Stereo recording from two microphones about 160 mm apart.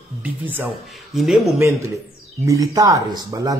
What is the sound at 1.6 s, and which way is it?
Speech, 15° right (ahead or behind).